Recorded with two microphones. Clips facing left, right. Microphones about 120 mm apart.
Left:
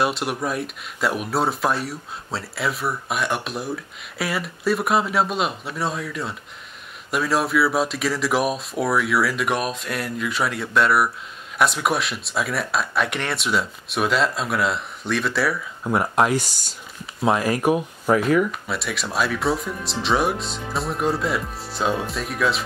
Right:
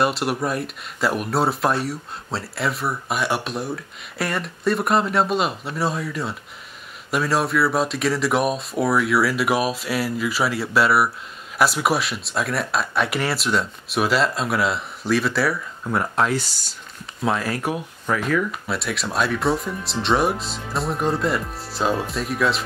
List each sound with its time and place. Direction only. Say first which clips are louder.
0.0 s speech: right 2 dB; centre (ahead or behind)
15.8 s speech: left 2 dB; 15° left (ahead or behind)
18.5 s speech: right 1 dB; centre (ahead or behind)